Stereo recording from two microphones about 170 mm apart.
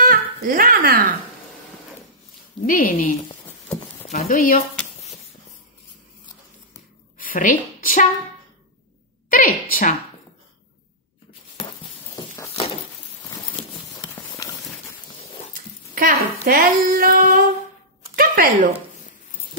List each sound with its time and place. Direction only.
0.0 s speech: 55° right (ahead or behind)
2.6 s a woman's voice: 55° left (ahead or behind)
4.1 s speech: 40° left (ahead or behind)
4.4 s a woman's voice: 55° left (ahead or behind)
7.2 s a woman's voice: 55° left (ahead or behind)
9.3 s a sound: 55° left (ahead or behind)
13.5 s a sound: 20° left (ahead or behind)
15.5 s speech: 55° right (ahead or behind)
18.1 s a sound: 55° right (ahead or behind)